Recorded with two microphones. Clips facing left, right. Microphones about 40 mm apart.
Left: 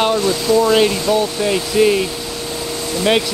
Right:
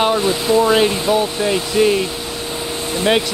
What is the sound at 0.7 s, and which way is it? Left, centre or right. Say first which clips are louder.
Speech: left 1 dB; centre.